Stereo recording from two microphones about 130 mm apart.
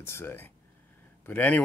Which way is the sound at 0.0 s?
20° left (ahead or behind).